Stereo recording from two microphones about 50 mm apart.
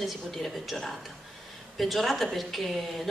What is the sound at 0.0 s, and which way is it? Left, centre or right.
A woman's voice, centre.